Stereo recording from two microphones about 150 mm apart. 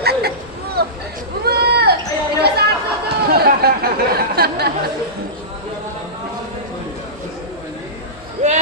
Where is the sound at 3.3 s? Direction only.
90° right.